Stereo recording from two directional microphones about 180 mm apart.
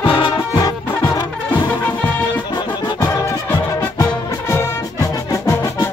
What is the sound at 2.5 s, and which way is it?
Music, 25° left (ahead or behind).